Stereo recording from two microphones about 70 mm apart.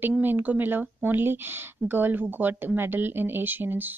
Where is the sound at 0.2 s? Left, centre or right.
Right.